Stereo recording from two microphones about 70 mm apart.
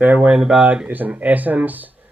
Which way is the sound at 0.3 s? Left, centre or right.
Centre.